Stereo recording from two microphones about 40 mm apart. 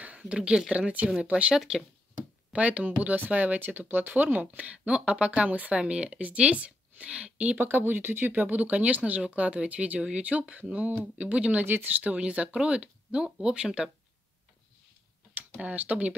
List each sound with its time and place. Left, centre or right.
0.0 s speech: right
1.5 s speech: centre
2.5 s speech: right
3.5 s speech: right
7.5 s speech: right
9.9 s speech: right
10.5 s speech: right
11.3 s speech: right
11.6 s speech: right
11.9 s speech: right
15.6 s speech: right